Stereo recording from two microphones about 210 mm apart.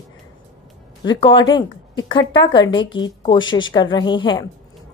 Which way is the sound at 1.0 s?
20° left (ahead or behind).